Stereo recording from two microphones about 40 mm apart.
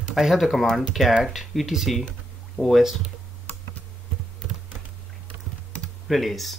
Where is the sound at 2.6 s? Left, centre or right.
Left.